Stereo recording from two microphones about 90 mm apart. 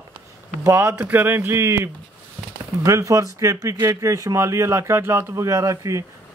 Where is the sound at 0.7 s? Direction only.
30° right (ahead or behind).